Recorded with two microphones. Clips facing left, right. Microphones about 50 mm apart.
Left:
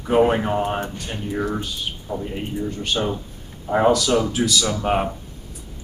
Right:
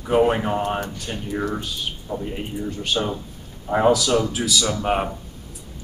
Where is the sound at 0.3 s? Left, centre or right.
Centre.